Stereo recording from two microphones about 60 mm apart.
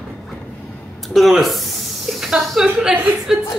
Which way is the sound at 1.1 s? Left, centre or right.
Centre.